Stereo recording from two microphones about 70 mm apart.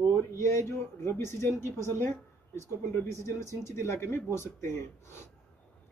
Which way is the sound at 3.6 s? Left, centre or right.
Left.